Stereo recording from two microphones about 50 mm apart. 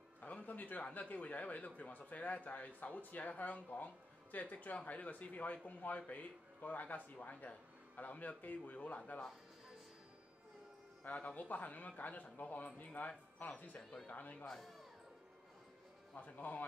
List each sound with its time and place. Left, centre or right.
0.2 s speech: left
11.1 s speech: left
14.4 s speech: centre
16.2 s speech: left